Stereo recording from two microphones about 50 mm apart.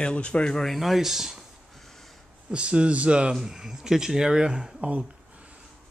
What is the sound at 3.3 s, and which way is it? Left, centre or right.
Speech, centre.